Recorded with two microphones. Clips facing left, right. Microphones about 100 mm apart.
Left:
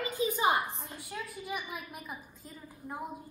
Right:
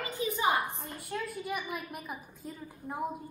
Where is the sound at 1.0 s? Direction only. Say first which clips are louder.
Right 6 dB; centre (ahead or behind).